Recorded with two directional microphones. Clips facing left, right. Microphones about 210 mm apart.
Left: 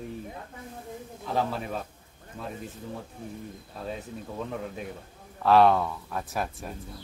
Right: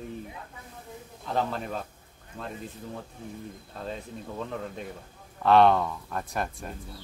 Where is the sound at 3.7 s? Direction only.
5° left (ahead or behind).